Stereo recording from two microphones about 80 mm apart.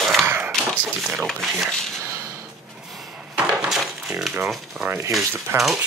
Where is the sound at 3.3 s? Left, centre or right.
Centre.